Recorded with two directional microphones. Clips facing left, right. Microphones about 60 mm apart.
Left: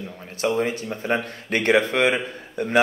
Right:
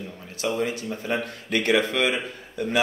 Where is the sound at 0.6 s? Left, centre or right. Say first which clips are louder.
Left 3 dB; left.